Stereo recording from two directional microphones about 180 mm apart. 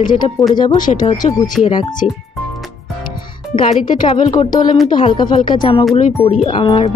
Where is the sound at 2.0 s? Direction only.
40° left (ahead or behind).